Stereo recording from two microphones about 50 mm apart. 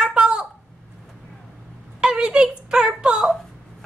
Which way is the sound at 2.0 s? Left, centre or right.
Centre.